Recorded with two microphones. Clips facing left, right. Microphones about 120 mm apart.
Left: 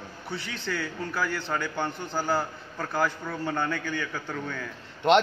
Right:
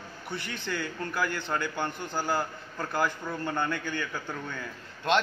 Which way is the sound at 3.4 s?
10° left (ahead or behind).